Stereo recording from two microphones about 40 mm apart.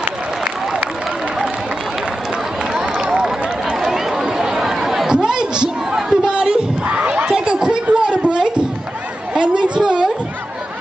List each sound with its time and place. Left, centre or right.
2.9 s run: centre
3.7 s chatter: centre
6.2 s a sound: right